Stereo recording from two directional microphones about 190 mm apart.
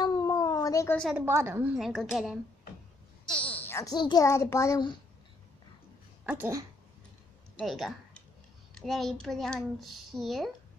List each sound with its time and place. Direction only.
0.0 s cat: 20° left (ahead or behind)
0.9 s speech: centre (ahead or behind)
1.2 s a woman's voice: 15° right (ahead or behind)
1.8 s a child's voice: centre (ahead or behind); by 4.9 s 20° left (ahead or behind)
6.2 s a woman's voice: 10° right (ahead or behind)
7.5 s speech: centre (ahead or behind)